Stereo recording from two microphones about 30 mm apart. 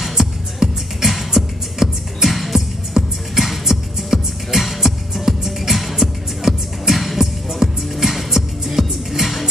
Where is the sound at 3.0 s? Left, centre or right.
Right.